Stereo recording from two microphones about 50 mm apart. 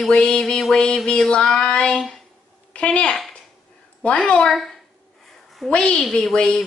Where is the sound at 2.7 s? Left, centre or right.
Left.